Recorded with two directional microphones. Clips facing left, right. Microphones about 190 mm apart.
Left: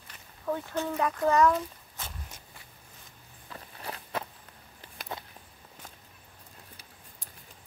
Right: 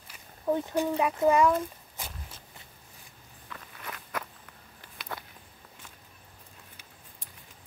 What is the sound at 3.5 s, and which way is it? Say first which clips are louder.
Walk: left 2 dB; 35° left (ahead or behind).